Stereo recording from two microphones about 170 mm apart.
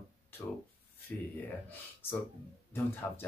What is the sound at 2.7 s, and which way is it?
Speech, 15° left (ahead or behind).